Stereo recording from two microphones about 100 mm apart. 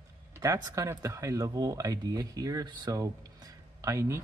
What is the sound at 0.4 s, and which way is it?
Speech, 30° right (ahead or behind).